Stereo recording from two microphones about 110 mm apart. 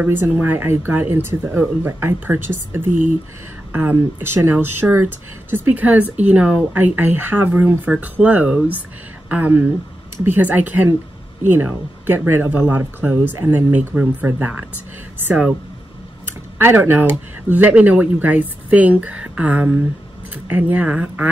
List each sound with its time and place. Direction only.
0.0 s speech: 15° right (ahead or behind)